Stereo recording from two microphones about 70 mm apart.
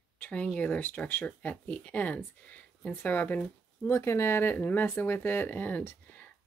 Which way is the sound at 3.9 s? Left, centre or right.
Left.